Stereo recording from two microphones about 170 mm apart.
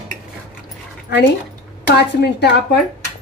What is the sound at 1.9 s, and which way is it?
Speech, 75° left (ahead or behind).